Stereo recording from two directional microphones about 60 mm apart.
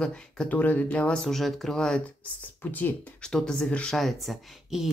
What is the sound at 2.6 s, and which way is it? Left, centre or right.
Speech, left.